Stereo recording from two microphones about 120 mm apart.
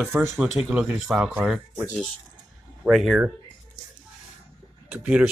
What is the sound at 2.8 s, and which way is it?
Speech, 20° right (ahead or behind).